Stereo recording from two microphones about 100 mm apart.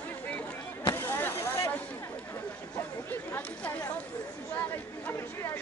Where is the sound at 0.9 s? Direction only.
20° left (ahead or behind).